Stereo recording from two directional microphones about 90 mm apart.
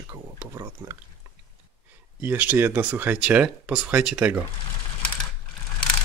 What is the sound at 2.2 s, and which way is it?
Speech, 20° right (ahead or behind).